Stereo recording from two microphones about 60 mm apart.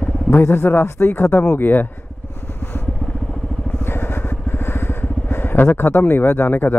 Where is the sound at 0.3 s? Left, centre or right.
Left.